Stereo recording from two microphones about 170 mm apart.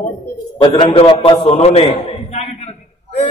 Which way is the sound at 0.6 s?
30° left (ahead or behind).